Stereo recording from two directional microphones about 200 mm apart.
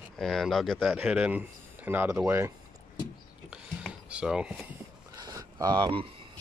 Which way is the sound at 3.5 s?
5° right (ahead or behind).